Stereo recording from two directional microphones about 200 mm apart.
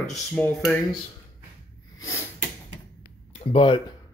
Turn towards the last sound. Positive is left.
turn(degrees=25)  # may be behind; listen again after turning